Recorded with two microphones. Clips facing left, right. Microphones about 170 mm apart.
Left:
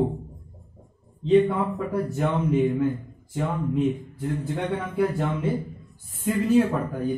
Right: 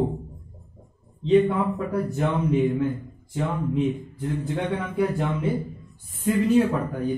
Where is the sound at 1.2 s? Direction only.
Centre (ahead or behind).